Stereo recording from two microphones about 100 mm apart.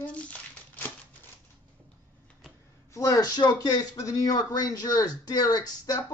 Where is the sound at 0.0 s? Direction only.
15° left (ahead or behind).